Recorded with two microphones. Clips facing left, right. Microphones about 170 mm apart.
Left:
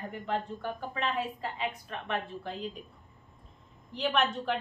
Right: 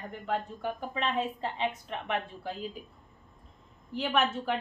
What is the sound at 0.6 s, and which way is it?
A woman's voice, 15° right (ahead or behind).